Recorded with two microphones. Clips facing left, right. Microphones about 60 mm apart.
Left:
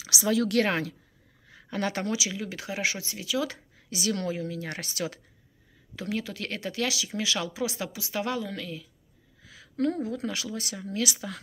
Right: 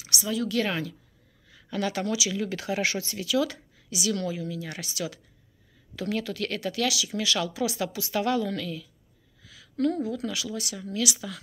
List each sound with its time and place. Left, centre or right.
0.2 s a woman's voice: left
1.5 s speech: left
2.3 s speech: centre; by 3.8 s left
3.9 s a woman's voice: left
5.9 s speech: centre
9.4 s speech: left